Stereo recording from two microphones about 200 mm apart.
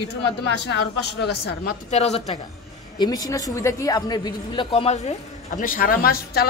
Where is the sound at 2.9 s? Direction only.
20° left (ahead or behind).